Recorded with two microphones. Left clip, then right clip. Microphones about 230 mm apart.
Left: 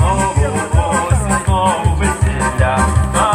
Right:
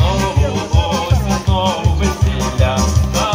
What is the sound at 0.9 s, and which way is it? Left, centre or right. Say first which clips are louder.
Music: left 3 dB; right.